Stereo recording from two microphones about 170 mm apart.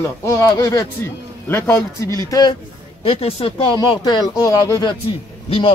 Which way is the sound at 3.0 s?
35° left (ahead or behind).